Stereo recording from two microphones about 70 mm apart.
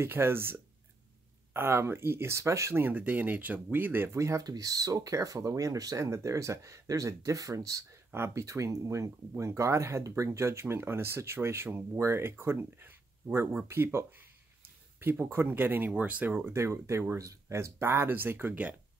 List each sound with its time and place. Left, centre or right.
0.0 s speech: right
2.7 s speech: right
4.1 s speech: right
4.4 s speech: right
9.3 s speech: right